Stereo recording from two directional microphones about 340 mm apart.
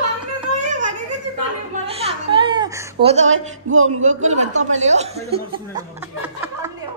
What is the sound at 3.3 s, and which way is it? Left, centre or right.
Speech, right.